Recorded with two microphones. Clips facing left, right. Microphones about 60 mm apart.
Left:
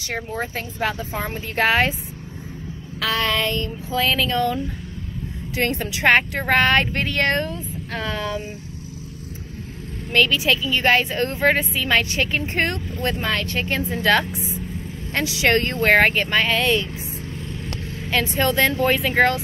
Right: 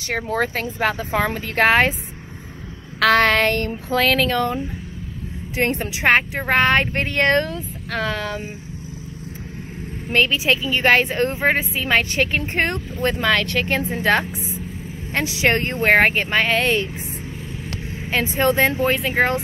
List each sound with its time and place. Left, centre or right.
0.6 s speech: right
1.7 s a woman's voice: right
3.0 s speech: right
5.6 s speech: right
6.1 s speech: centre
6.5 s a woman's voice: right
10.1 s speech: right
10.6 s a woman's voice: right
13.2 s speech: right
13.8 s speech: right
18.1 s speech: right
18.8 s speech: centre